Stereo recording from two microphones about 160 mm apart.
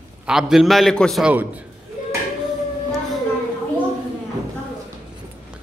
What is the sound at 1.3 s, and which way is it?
Speech, 10° right (ahead or behind).